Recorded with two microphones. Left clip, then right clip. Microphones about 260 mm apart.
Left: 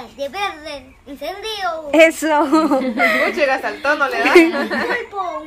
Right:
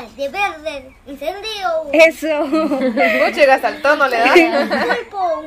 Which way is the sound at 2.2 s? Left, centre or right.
Centre.